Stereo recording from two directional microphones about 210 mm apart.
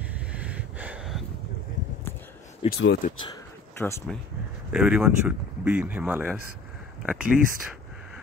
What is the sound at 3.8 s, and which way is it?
Speech, 10° left (ahead or behind).